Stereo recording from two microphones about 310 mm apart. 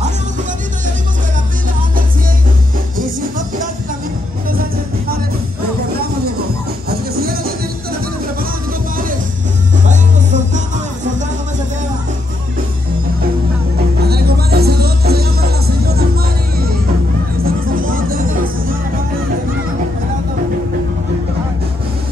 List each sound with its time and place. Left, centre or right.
4.5 s music: right
6.9 s music: right
9.8 s music: right
14.0 s music: right
17.4 s music: right